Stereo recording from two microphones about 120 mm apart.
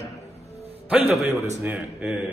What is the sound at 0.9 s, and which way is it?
A man's voice, 10° right (ahead or behind).